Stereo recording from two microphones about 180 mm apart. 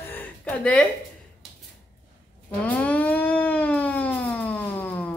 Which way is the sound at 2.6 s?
10° left (ahead or behind).